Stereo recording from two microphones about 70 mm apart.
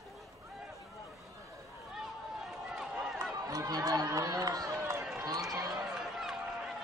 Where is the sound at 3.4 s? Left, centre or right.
Right.